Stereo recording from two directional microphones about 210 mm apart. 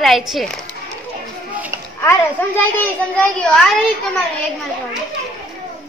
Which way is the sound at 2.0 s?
10° left (ahead or behind).